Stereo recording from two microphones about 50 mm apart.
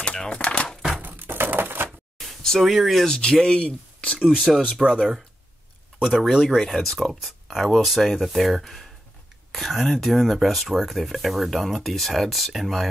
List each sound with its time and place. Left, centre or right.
0.0 s crumpling: centre
1.0 s crushing: right
2.1 s a sound: centre
2.6 s speech: centre
3.1 s a man's voice: centre
4.2 s speech: centre
5.9 s speech: centre
6.6 s speech: centre